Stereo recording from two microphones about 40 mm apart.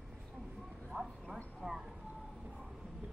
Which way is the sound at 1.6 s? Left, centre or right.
Centre.